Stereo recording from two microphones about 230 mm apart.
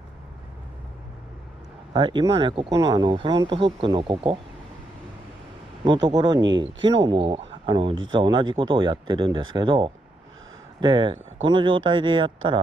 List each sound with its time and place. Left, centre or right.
2.0 s speech: centre
6.0 s speech: centre